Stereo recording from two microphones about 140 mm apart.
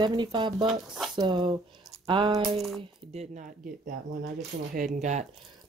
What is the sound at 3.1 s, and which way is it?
Speech, 60° right (ahead or behind).